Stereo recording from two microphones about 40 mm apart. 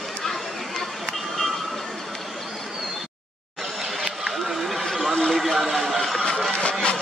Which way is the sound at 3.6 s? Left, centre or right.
Centre.